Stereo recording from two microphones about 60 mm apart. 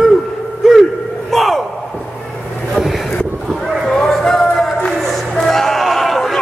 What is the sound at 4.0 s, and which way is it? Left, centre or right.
Music, centre.